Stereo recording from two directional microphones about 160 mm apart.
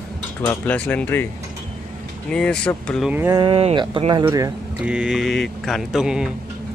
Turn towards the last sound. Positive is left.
turn(degrees=-5)  # may be behind; listen again after turning